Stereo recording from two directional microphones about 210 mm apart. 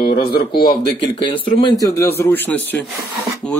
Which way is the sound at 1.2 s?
20° left (ahead or behind).